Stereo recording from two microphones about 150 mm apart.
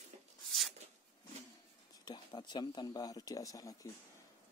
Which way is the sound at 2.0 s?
30° left (ahead or behind).